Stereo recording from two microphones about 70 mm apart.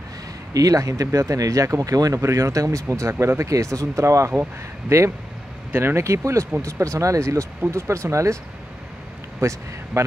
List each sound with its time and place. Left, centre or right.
0.5 s speech: right
9.4 s speech: right